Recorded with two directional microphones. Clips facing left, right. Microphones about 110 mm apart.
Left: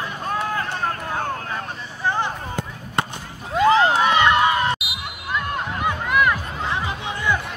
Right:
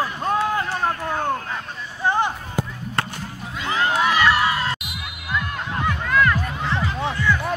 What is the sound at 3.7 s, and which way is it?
Crowd, 20° left (ahead or behind).